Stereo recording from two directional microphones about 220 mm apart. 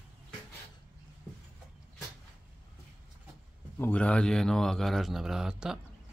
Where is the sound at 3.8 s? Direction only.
5° left (ahead or behind).